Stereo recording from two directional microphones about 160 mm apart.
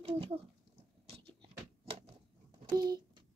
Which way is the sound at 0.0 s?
35° right (ahead or behind).